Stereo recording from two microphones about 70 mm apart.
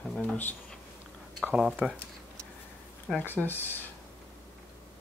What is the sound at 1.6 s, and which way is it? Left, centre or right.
Speech, centre.